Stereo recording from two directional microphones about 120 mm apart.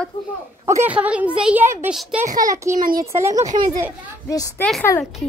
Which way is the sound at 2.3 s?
30° right (ahead or behind).